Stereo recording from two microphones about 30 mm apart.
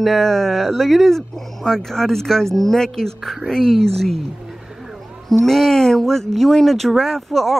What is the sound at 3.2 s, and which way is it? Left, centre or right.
Speech, centre.